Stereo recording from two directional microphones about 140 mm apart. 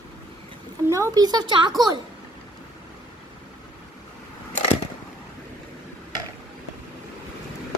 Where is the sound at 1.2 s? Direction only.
30° right (ahead or behind).